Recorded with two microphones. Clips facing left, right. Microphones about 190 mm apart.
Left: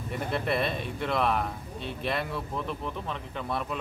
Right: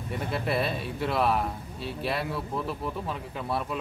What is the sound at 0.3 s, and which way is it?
A man's voice, 5° right (ahead or behind).